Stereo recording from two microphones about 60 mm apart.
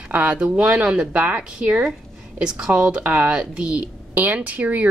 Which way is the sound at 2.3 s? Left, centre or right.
Centre.